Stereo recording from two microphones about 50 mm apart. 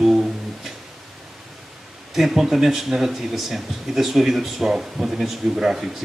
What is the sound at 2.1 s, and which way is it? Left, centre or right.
Speech, centre.